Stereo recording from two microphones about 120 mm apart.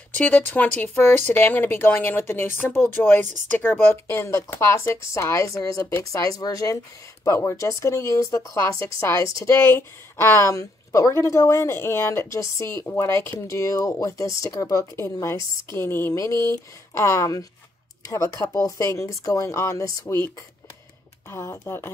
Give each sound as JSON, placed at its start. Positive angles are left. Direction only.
{"t": 0.1, "sound": "a woman's voice", "side_deg": 15}
{"t": 21.3, "sound": "a woman's voice", "side_deg": 20}